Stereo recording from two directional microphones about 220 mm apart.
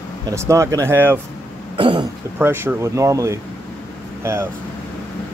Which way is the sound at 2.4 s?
10° right (ahead or behind).